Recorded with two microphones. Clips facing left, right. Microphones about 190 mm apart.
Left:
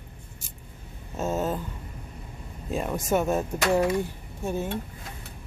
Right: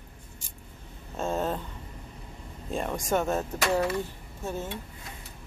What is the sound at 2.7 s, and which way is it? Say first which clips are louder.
Speech: left 2 dB; 5° left (ahead or behind).